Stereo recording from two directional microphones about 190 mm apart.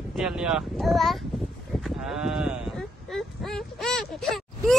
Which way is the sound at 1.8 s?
5° right (ahead or behind).